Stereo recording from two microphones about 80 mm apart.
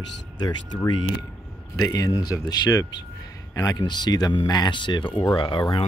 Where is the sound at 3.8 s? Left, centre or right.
Left.